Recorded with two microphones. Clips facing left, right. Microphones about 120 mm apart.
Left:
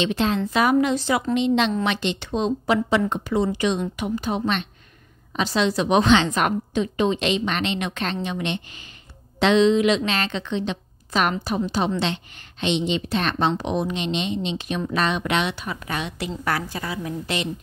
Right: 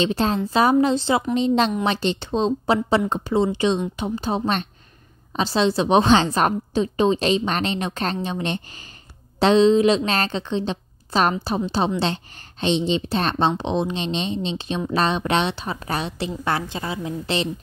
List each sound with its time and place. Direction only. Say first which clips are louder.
0.0 s a woman's voice: right 1 dB; 35° right (ahead or behind)
1.3 s a woman's voice: left 1 dB; 35° right (ahead or behind)